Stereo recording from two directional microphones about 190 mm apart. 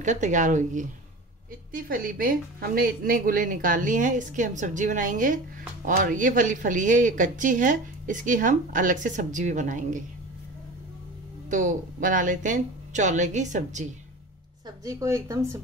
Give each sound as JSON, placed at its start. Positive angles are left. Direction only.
{"t": 0.0, "sound": "speech", "side_deg": -40}
{"t": 11.5, "sound": "speech", "side_deg": -45}
{"t": 14.9, "sound": "a woman's voice", "side_deg": -15}